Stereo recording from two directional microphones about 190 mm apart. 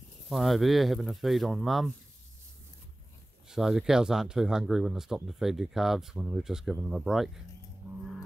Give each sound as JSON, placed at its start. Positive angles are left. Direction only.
{"t": 0.3, "sound": "speech", "side_deg": 0}
{"t": 3.4, "sound": "speech", "side_deg": 0}
{"t": 7.8, "sound": "livestock", "side_deg": -10}